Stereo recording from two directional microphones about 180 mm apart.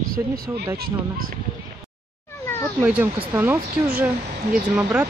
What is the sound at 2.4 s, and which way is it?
Cat, 15° left (ahead or behind).